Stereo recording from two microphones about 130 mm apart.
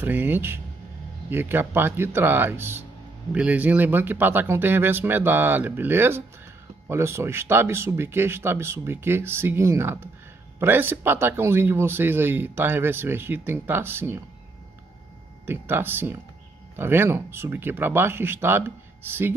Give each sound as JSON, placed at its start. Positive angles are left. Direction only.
{"t": 0.0, "sound": "speech", "side_deg": -15}
{"t": 15.4, "sound": "speech", "side_deg": -15}